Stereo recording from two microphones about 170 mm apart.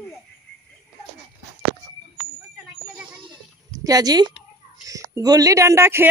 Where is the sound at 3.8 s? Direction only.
20° right (ahead or behind).